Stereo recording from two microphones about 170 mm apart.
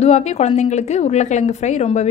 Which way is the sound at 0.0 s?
40° left (ahead or behind).